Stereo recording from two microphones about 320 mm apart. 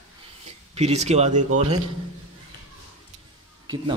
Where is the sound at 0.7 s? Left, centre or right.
Centre.